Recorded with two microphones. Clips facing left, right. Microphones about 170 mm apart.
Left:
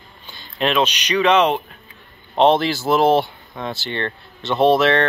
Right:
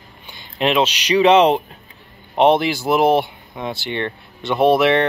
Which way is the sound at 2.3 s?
15° right (ahead or behind).